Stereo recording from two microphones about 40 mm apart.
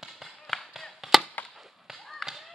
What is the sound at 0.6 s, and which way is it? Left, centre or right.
Chop, centre.